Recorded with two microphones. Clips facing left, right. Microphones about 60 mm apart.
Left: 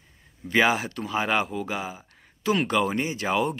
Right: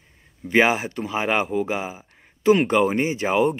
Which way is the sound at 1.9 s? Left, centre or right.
Right.